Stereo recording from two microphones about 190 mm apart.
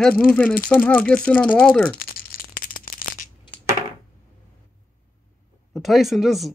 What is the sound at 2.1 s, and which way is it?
Rattle, 50° left (ahead or behind).